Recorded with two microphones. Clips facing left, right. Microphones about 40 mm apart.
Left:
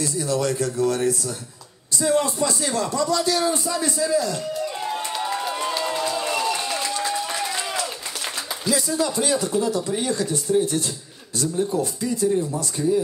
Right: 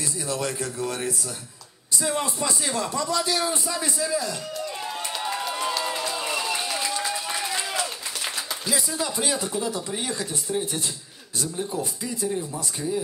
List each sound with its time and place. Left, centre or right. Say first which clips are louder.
0.0 s a man's voice: left 5 dB; right
4.8 s run: left 4 dB; centre
8.6 s a man's voice: left 6 dB; centre
12.8 s speech: left 8 dB; centre